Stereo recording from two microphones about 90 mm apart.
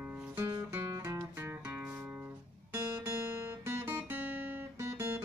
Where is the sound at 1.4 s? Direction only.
15° right (ahead or behind).